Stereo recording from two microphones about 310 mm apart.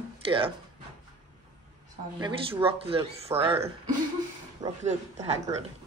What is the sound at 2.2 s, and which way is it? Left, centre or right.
Speech, centre.